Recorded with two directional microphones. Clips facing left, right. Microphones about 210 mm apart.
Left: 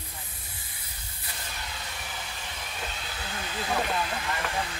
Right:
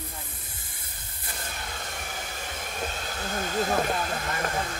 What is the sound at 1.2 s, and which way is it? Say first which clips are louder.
Train: right 3 dB; 50° right (ahead or behind).